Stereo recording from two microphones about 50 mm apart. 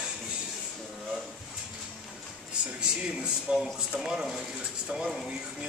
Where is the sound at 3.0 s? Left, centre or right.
Centre.